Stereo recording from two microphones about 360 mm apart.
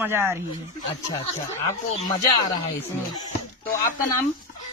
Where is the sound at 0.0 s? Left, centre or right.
Centre.